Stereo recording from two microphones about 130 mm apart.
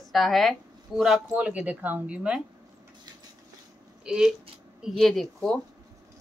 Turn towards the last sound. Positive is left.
turn(degrees=0)  # may be behind; listen again after turning